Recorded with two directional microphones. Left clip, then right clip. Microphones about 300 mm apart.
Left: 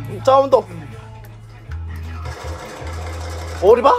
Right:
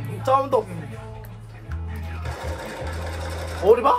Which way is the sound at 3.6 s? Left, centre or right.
Left.